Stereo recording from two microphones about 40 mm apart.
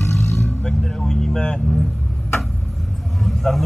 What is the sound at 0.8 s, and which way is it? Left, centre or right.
Vehicle, centre.